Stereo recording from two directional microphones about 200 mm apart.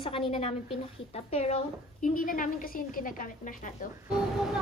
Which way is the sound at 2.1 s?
45° left (ahead or behind).